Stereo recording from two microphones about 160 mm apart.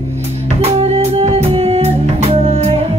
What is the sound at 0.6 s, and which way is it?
Music, 40° right (ahead or behind).